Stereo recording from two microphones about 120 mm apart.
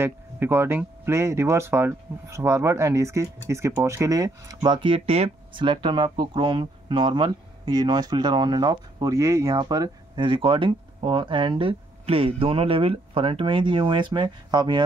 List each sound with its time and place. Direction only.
0.0 s speech: 20° right (ahead or behind); by 10.2 s 35° right (ahead or behind)
10.2 s speech: 45° right (ahead or behind)